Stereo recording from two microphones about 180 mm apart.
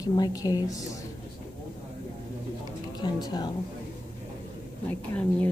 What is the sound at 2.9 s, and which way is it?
Speech, 25° left (ahead or behind).